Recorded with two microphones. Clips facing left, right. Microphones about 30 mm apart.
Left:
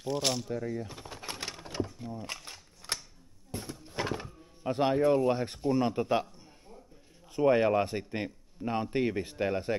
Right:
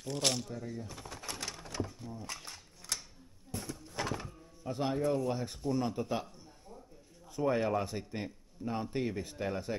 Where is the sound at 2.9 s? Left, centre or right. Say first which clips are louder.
Left 3 dB; left.